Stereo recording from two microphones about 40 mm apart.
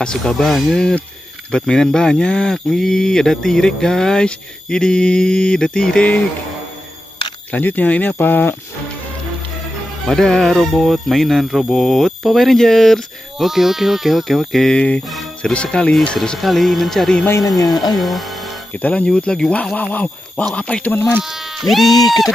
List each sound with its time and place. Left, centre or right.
0.0 s speech: centre
0.5 s speech: centre
1.5 s speech: centre
4.3 s a sound: centre
7.5 s speech: left
8.2 s speech: left
10.0 s speech: centre
13.4 s speech: centre
14.7 s a sound: left
16.4 s speech: centre
18.7 s speech: left
19.0 s a sound: left
19.7 s speech: left
21.2 s speech: centre